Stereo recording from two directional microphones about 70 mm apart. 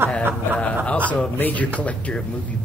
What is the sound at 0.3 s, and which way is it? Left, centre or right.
Speech, centre.